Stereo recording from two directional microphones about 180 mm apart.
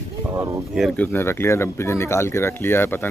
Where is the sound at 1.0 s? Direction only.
15° left (ahead or behind).